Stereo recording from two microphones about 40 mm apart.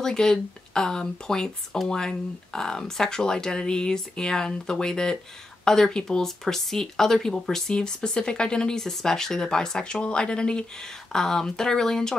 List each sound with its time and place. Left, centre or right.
0.0 s speech: centre